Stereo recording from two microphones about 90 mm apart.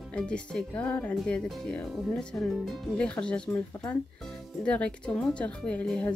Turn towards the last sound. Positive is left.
turn(degrees=10)  # may be behind; listen again after turning